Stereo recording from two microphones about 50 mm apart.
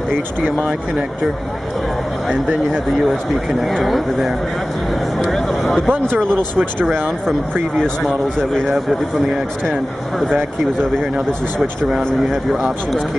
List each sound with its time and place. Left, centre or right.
3.6 s speech: centre
5.3 s a sound: centre
6.3 s speech: right
8.4 s speech: centre
10.1 s speech: centre